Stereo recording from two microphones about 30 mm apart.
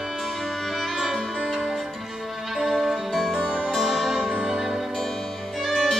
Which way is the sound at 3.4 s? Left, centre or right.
Right.